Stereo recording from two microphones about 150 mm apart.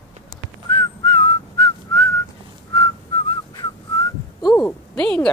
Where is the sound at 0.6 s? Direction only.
20° left (ahead or behind).